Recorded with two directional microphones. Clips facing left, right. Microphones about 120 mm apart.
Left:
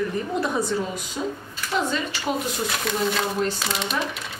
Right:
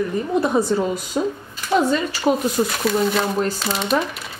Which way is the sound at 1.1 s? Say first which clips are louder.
Right 6 dB; 45° right (ahead or behind).